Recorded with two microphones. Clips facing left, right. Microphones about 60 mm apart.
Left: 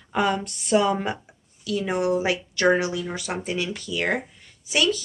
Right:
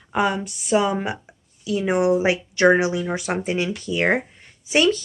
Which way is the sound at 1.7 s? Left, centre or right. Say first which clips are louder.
Right 4 dB; right.